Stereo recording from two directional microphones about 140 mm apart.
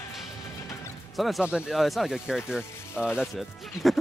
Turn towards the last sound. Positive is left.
turn(degrees=0)  # may be behind; listen again after turning